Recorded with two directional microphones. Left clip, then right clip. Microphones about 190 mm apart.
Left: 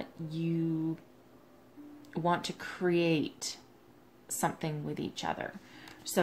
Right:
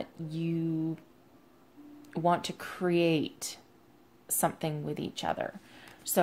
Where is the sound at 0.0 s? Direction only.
40° right (ahead or behind).